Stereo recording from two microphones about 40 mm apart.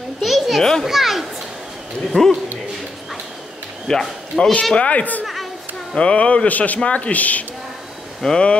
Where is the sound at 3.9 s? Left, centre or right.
Centre.